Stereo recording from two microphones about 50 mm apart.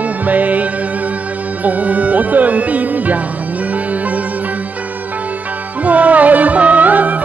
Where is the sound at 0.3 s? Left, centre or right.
Right.